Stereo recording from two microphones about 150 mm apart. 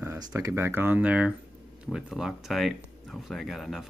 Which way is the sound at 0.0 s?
20° right (ahead or behind).